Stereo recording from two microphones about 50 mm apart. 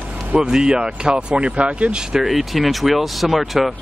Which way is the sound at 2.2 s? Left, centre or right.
Centre.